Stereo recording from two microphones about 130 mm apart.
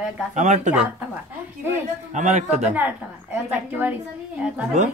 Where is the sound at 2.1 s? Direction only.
70° right (ahead or behind).